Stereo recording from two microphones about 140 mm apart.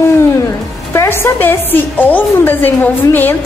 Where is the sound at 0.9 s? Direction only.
20° left (ahead or behind).